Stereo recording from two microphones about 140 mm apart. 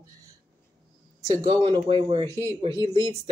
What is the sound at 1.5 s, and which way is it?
Speech, 30° right (ahead or behind).